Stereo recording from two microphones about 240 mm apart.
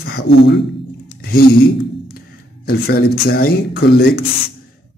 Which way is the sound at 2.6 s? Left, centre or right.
Left.